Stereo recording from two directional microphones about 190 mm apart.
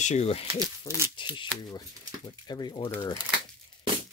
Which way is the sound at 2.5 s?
20° left (ahead or behind).